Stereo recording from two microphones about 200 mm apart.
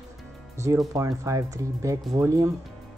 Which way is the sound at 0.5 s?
15° right (ahead or behind).